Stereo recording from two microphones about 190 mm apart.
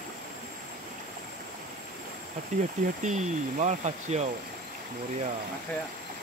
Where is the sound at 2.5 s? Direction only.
40° right (ahead or behind).